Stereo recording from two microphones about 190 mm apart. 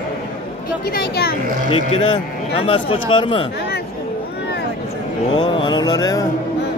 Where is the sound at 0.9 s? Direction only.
55° left (ahead or behind).